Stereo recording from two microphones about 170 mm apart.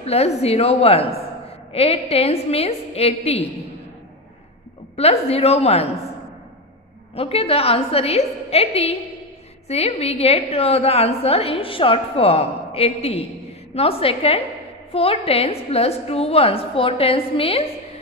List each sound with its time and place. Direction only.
0.0 s a woman's voice: 40° left (ahead or behind)
4.9 s a woman's voice: 35° left (ahead or behind)
7.2 s a woman's voice: 35° left (ahead or behind)